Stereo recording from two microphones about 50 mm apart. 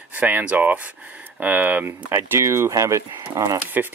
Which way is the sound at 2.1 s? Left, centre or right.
Right.